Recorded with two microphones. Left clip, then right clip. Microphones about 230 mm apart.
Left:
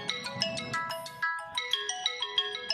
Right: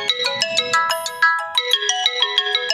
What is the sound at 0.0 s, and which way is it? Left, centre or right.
Ringtone, right.